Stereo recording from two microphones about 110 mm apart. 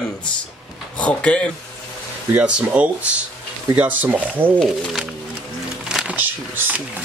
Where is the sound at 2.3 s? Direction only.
10° right (ahead or behind).